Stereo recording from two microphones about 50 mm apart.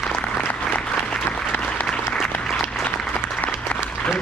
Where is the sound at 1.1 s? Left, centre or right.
Left.